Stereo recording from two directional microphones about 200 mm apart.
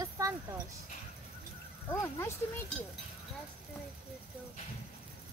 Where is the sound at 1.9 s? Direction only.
15° left (ahead or behind).